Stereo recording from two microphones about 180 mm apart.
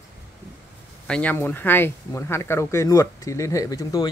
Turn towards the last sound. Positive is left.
turn(degrees=20)  # may be behind; listen again after turning